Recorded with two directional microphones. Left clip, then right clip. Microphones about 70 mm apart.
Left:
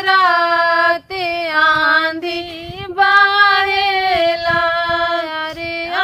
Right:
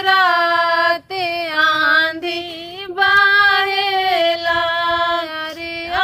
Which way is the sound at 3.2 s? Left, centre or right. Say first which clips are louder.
Left 1 dB; left.